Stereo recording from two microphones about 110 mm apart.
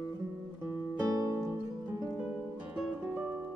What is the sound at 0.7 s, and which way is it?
Guitar, 30° right (ahead or behind).